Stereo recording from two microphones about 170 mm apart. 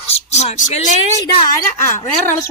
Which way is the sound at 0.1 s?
40° left (ahead or behind).